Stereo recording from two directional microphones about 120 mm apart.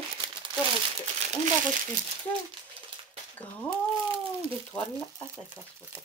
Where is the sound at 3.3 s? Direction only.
15° left (ahead or behind).